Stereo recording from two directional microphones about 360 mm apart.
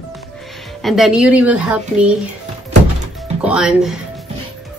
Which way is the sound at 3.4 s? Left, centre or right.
Centre.